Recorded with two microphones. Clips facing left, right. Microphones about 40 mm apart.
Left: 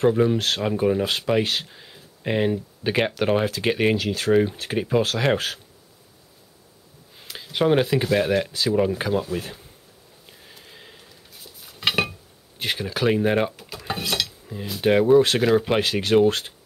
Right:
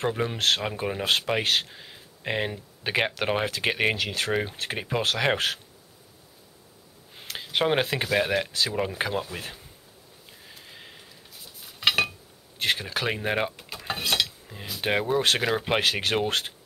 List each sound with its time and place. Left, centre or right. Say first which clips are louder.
0.1 s speech: left 5 dB; centre
1.4 s speech: even; right
1.7 s speech: even; centre
3.9 s speech: left 4 dB; right
4.3 s speech: left 8 dB; centre
7.5 s speech: left 5 dB; right
8.1 s speech: left 4 dB; centre
10.4 s a sound: even; centre
12.5 s stir: left 1 dB; centre
14.1 s cutlery: even; centre
14.8 s speech: left 9 dB; centre
15.8 s speech: left 7 dB; right